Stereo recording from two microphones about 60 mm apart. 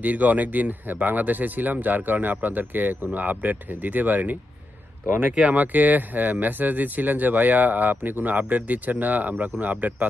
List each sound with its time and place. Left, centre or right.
0.0 s speech: right